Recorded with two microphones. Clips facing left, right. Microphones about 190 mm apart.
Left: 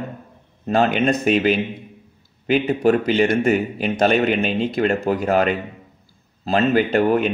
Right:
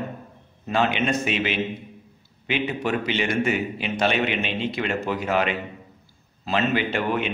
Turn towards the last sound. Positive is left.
turn(degrees=40)  # may be behind; listen again after turning